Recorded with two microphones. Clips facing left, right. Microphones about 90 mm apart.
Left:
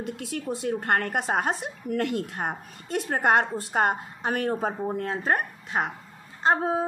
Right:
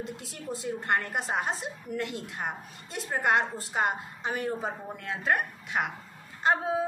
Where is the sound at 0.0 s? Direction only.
60° left (ahead or behind).